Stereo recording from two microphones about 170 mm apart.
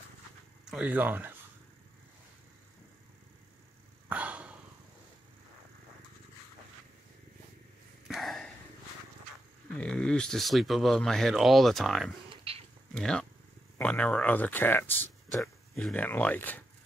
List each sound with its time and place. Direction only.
0.7 s speech: 5° right (ahead or behind)
4.1 s a sound: 10° right (ahead or behind)
8.1 s a sound: centre (ahead or behind)
9.7 s speech: 5° left (ahead or behind)
12.5 s cat: 30° right (ahead or behind)
12.9 s speech: 5° left (ahead or behind)